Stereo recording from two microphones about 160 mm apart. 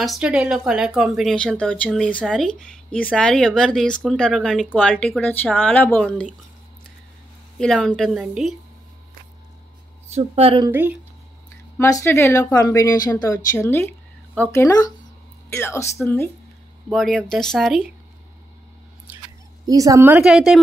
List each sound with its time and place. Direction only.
0.0 s a woman's voice: 5° right (ahead or behind)
5.2 s speech: 10° left (ahead or behind)
7.5 s a woman's voice: 5° left (ahead or behind)
10.1 s a woman's voice: 40° right (ahead or behind)
10.7 s speech: 10° right (ahead or behind)
11.8 s speech: 15° left (ahead or behind)
16.9 s a woman's voice: 5° left (ahead or behind)
19.6 s a woman's voice: 20° right (ahead or behind)
20.2 s a woman's voice: centre (ahead or behind)